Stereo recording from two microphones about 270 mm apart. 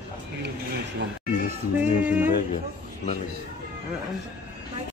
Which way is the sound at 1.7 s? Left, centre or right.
Centre.